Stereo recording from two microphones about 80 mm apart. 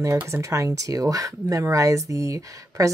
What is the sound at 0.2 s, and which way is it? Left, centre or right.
Speech, right.